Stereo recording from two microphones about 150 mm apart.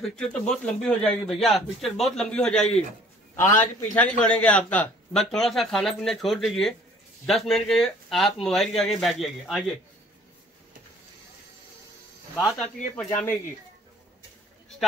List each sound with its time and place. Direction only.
0.0 s a man's voice: 5° left (ahead or behind)
3.3 s a man's voice: 15° left (ahead or behind); by 9.8 s centre (ahead or behind)
13.1 s a man's voice: 15° left (ahead or behind)